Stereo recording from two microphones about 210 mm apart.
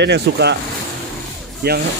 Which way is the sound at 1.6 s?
50° right (ahead or behind).